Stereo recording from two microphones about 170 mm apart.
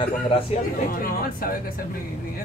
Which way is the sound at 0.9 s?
60° left (ahead or behind).